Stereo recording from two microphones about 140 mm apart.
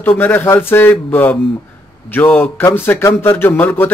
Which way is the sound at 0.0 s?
15° left (ahead or behind).